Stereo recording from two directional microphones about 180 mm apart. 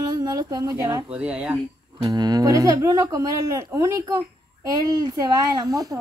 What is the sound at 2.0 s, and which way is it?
A woman's voice, 20° right (ahead or behind).